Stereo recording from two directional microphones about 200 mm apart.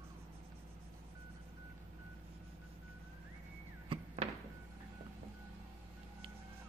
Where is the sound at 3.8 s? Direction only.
30° right (ahead or behind).